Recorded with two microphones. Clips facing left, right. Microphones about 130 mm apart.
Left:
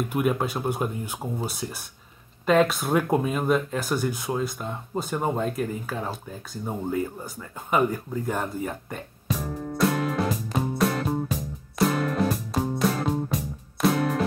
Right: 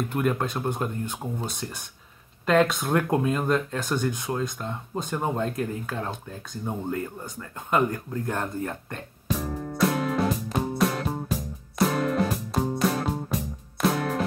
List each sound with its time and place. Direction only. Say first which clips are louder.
0.1 s speech: left 1 dB; 10° left (ahead or behind)
9.8 s music: even; centre (ahead or behind)